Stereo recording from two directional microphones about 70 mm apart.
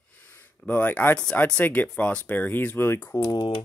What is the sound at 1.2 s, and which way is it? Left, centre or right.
Speech, centre.